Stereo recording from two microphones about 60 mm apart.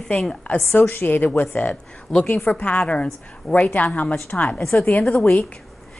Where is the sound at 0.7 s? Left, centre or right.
Left.